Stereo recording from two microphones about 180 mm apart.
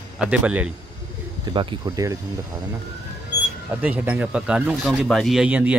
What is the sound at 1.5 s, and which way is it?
Speech, 25° right (ahead or behind).